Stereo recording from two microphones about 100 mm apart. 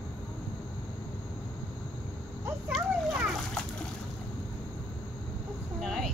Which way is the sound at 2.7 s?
Centre (ahead or behind).